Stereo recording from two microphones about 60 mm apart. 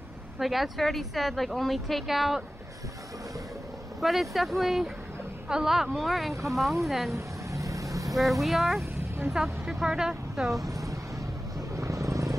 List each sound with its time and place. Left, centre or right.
0.4 s a woman's voice: centre
4.0 s a woman's voice: centre
5.9 s a woman's voice: centre
7.1 s vehicle: right
8.1 s a woman's voice: centre
10.7 s vehicle: right